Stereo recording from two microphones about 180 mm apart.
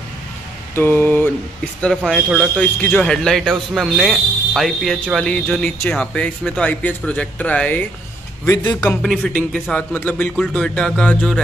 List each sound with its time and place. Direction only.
0.7 s a man's voice: 10° left (ahead or behind)